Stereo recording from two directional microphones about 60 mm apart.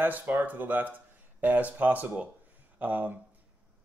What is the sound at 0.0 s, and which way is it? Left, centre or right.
Speech, right.